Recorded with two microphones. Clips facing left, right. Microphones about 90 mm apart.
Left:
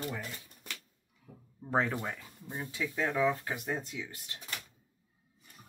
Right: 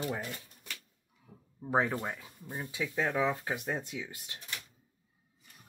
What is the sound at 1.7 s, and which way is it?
Speech, 10° right (ahead or behind).